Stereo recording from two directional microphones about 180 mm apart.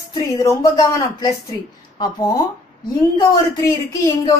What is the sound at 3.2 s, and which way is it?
A woman's voice, 15° left (ahead or behind).